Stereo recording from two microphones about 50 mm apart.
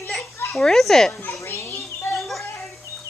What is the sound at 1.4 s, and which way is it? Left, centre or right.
Children playing, left.